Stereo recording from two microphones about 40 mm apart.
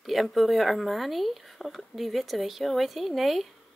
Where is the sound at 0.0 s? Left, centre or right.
Centre.